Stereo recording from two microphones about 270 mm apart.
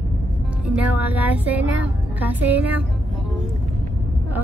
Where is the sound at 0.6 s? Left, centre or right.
Centre.